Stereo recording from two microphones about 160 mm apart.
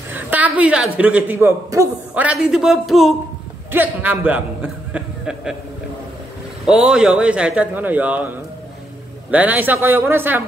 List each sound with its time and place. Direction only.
0.1 s a man's voice: 10° right (ahead or behind)
2.2 s speech: 5° right (ahead or behind)
3.7 s a man's voice: 10° right (ahead or behind)
6.6 s a man's voice: 5° right (ahead or behind)